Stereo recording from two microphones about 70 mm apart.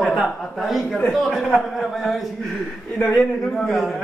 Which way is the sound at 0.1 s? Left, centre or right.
Centre.